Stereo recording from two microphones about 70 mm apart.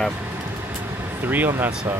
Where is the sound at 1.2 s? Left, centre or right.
Right.